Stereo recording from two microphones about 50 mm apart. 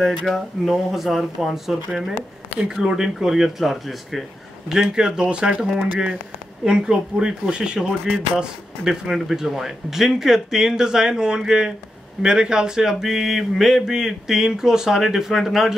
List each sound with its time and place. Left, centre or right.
0.3 s speech: centre
4.6 s speech: centre
9.0 s speech: centre